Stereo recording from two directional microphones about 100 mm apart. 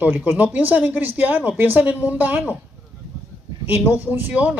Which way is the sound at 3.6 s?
20° right (ahead or behind).